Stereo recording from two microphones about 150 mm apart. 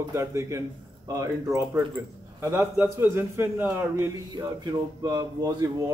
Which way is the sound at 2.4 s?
20° right (ahead or behind).